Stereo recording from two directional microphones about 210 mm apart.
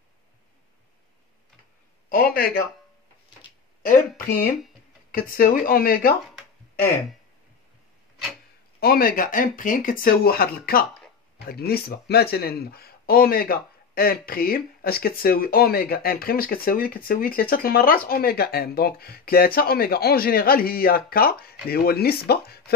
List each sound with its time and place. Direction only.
2.0 s a man's voice: 45° left (ahead or behind)
5.1 s speech: 45° left (ahead or behind)
8.7 s speech: 45° left (ahead or behind)